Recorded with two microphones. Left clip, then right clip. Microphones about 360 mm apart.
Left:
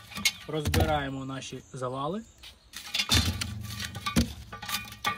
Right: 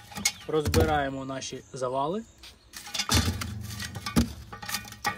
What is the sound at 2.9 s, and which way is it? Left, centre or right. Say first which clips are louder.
Music: left 1 dB; centre.